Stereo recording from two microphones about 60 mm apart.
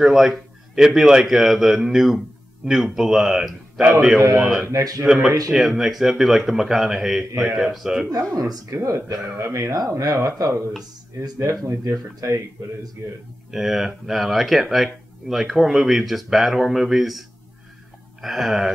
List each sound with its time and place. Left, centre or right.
0.0 s a man's voice: centre
4.6 s speech: right
5.0 s speech: centre
8.4 s speech: right
8.7 s speech: right
11.6 s speech: right
13.5 s speech: centre
18.2 s speech: centre